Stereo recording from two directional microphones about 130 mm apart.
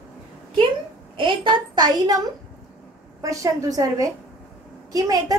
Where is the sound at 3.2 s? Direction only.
25° right (ahead or behind).